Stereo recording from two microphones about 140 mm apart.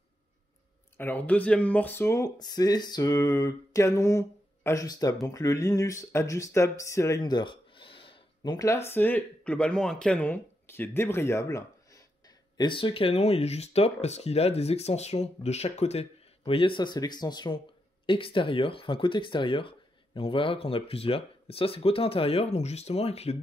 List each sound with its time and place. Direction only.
0.9 s speech: 15° left (ahead or behind); by 8.2 s 40° left (ahead or behind)
8.4 s speech: 25° left (ahead or behind)
12.5 s speech: 35° left (ahead or behind)